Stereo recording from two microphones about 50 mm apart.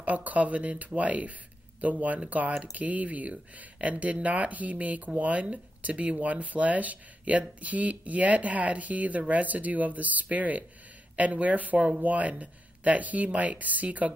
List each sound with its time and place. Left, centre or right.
0.0 s speech: right